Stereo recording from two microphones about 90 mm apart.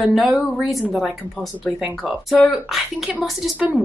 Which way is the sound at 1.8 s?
10° right (ahead or behind).